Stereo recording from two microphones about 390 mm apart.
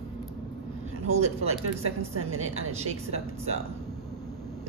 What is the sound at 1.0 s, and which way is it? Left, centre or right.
A man's voice, right.